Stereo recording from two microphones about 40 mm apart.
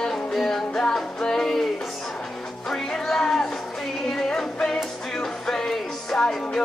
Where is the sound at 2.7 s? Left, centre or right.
Centre.